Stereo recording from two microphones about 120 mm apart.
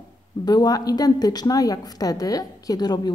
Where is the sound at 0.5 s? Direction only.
35° left (ahead or behind).